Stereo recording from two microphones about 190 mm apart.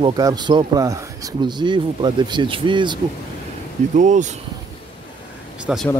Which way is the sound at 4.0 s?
40° right (ahead or behind).